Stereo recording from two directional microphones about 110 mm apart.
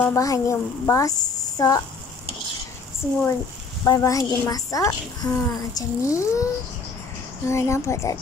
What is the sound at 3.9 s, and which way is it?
A woman's voice, 30° left (ahead or behind).